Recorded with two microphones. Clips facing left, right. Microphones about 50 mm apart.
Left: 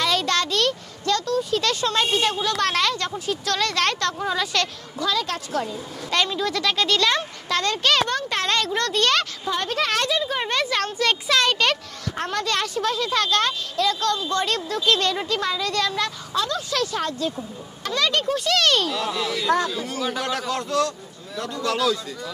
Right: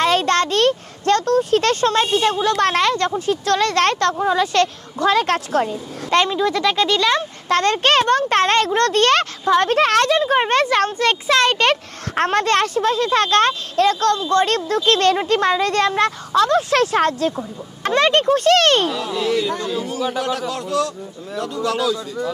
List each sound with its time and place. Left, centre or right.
0.0 s speech: right
4.9 s speech: right
6.0 s speech: right
6.3 s a man's voice: centre
7.4 s speech: right
12.2 s speech: right
17.8 s speech: right
19.1 s a man's voice: centre